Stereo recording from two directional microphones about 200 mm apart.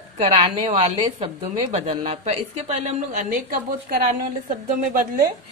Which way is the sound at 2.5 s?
35° right (ahead or behind).